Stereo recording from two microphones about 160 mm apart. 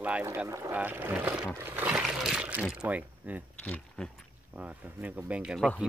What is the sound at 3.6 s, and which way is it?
Speech, 5° left (ahead or behind).